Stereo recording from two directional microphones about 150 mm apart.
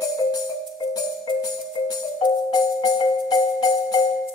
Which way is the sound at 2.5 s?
25° left (ahead or behind).